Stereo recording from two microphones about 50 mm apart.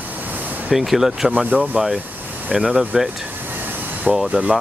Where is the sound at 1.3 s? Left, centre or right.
Right.